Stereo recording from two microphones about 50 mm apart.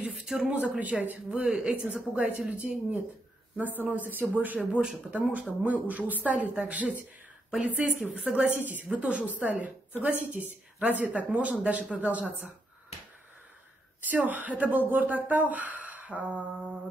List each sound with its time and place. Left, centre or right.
0.2 s a sound: centre
0.5 s speech: right
1.3 s speech: centre
2.1 s a woman's voice: right
3.5 s a woman's voice: right
8.5 s a woman's voice: right
14.1 s a woman's voice: right
15.5 s a sound: right